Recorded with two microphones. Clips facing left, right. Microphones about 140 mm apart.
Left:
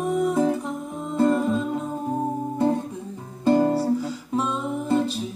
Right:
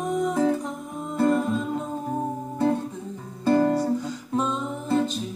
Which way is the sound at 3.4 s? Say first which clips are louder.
Left 1 dB; 15° left (ahead or behind).